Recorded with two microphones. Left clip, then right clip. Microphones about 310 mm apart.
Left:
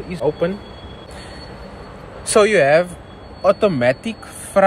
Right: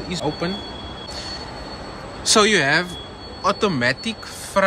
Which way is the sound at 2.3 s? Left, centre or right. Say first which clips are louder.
Left 3 dB; centre.